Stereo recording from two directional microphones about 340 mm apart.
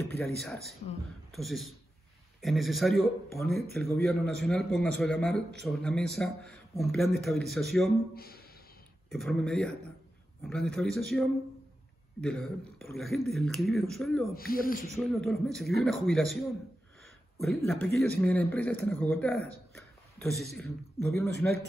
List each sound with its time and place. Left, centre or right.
0.1 s speech: centre
8.1 s speech: left
9.1 s speech: centre
14.3 s speech: left
15.0 s speech: centre
19.7 s a sound: centre
21.4 s speech: centre